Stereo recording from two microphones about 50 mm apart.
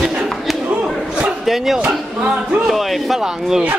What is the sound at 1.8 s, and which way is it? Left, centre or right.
Speech, right.